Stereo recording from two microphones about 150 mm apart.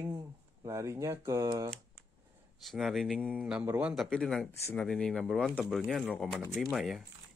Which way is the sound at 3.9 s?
5° left (ahead or behind).